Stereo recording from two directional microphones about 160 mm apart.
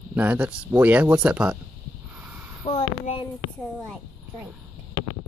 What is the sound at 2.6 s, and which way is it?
Speech, 35° left (ahead or behind).